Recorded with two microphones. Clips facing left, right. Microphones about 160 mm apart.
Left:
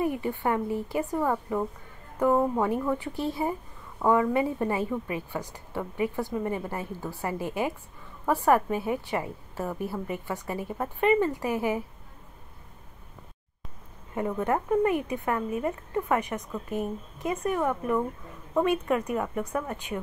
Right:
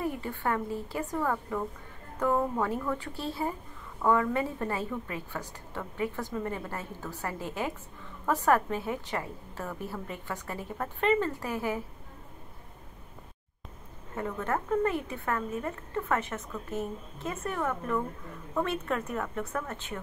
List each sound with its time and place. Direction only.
0.0 s speech: 15° left (ahead or behind)
14.1 s speech: 15° left (ahead or behind)